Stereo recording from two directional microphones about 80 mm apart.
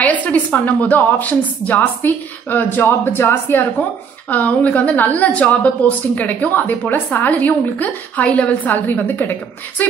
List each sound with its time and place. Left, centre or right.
0.0 s a woman's voice: centre